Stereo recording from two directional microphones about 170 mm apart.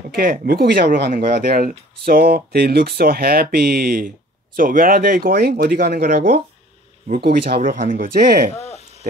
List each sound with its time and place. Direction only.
0.1 s speech: 60° right (ahead or behind)
6.0 s speech: 45° right (ahead or behind)
7.2 s speech: 65° right (ahead or behind)
7.7 s speech: 55° right (ahead or behind)
8.5 s a sound: 40° left (ahead or behind)